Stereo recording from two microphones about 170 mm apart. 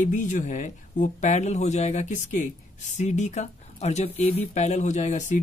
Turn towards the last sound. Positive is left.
turn(degrees=45)  # may be behind; listen again after turning